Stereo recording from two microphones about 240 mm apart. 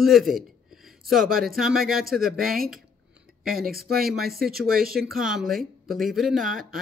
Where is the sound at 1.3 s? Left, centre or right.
Right.